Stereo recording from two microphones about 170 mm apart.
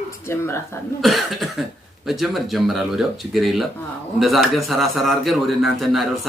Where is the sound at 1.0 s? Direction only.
Centre (ahead or behind).